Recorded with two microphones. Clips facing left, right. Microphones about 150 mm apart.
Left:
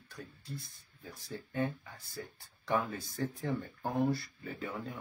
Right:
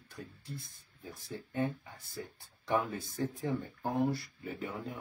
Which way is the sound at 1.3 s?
20° right (ahead or behind).